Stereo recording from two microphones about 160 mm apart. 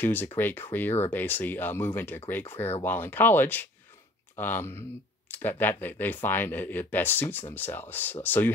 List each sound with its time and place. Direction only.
0.0 s speech: 15° left (ahead or behind)